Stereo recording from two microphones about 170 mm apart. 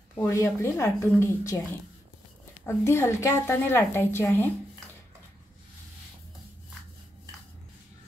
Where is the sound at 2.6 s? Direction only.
15° left (ahead or behind).